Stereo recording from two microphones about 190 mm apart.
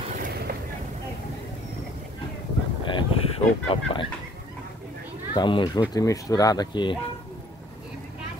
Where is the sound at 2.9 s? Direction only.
30° left (ahead or behind).